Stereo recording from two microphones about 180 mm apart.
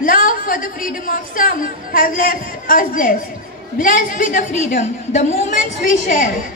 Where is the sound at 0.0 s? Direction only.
50° left (ahead or behind).